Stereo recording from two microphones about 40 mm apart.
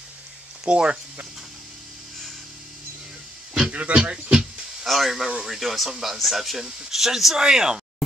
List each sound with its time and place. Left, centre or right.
0.7 s speech: right
3.7 s speech: right
4.0 s speech: centre
4.8 s speech: centre